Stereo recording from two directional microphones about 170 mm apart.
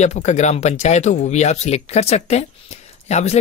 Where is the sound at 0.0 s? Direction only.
45° left (ahead or behind).